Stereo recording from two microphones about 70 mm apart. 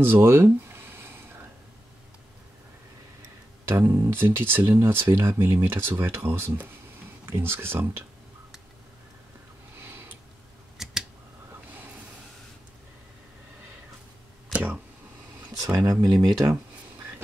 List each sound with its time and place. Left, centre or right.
0.0 s a sound: right
3.7 s speech: right
9.8 s sniff: right
10.8 s scissors: centre
14.5 s a sound: right
15.8 s speech: right